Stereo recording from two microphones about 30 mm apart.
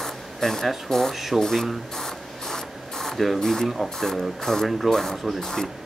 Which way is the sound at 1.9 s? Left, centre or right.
Centre.